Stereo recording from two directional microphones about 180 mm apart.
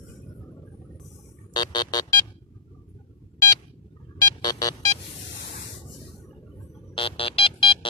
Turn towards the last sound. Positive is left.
turn(degrees=30)  # may be behind; listen again after turning